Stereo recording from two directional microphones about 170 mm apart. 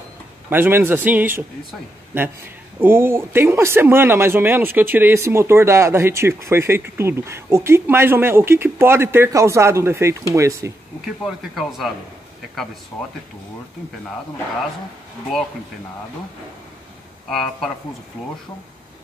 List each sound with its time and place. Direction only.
0.5 s speech: 15° right (ahead or behind)
11.2 s speech: centre (ahead or behind)
17.3 s speech: centre (ahead or behind)